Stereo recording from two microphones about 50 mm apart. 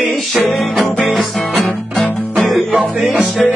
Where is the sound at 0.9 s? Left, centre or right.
Left.